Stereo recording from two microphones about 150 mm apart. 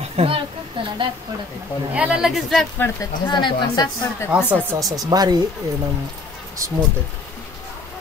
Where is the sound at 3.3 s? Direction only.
30° left (ahead or behind).